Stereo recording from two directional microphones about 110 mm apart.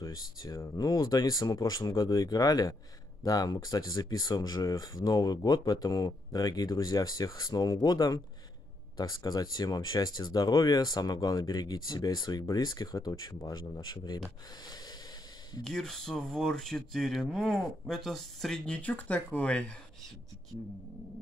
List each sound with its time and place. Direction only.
0.0 s speech: 30° left (ahead or behind)
15.6 s speech: 5° left (ahead or behind)